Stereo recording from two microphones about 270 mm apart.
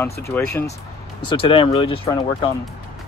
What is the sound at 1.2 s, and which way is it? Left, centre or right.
Speech, centre.